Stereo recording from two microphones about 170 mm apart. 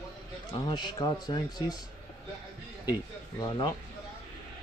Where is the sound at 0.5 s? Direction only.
25° left (ahead or behind).